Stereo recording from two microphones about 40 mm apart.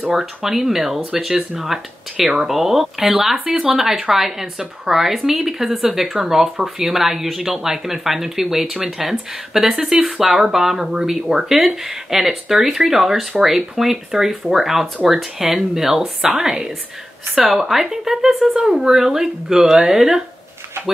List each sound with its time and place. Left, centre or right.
0.1 s speech: centre
9.8 s speech: centre
10.1 s speech: centre
16.2 s speech: centre